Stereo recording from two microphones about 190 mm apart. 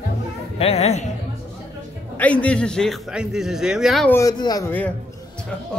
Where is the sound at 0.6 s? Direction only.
30° left (ahead or behind).